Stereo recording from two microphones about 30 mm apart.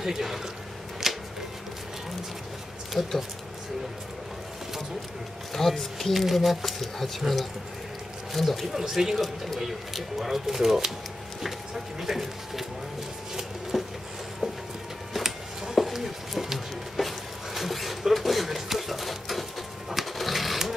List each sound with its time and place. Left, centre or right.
0.0 s speech: centre
1.0 s a sound: centre
3.0 s speech: centre
5.5 s speech: centre
13.4 s a sound: centre
15.1 s music: centre
16.5 s music: centre
17.6 s a sound: centre
20.2 s sewing machine: centre